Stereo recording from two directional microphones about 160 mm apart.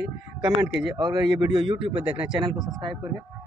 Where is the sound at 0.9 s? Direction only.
25° right (ahead or behind).